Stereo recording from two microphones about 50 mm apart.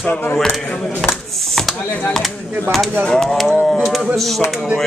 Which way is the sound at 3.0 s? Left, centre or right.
Centre.